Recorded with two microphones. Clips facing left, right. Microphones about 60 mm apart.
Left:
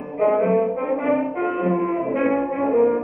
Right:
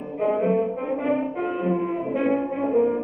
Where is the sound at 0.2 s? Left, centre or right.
Left.